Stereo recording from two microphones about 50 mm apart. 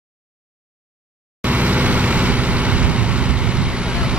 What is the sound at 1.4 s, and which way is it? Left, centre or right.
Vehicle, right.